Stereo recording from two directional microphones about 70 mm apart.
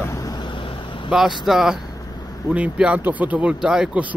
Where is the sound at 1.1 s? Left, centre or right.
Centre.